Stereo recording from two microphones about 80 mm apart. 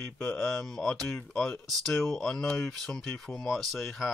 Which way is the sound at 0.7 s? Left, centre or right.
Centre.